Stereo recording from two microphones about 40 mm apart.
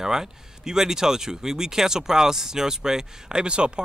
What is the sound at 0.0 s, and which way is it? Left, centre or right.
Speech, centre.